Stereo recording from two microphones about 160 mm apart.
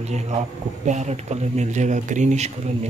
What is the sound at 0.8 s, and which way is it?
Speech, 45° right (ahead or behind).